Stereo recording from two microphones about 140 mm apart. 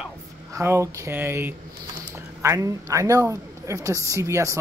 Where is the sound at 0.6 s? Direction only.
20° right (ahead or behind).